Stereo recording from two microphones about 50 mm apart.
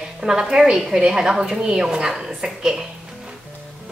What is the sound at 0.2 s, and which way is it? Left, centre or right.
A woman's voice, centre.